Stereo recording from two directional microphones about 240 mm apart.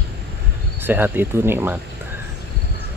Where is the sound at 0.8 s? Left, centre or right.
Centre.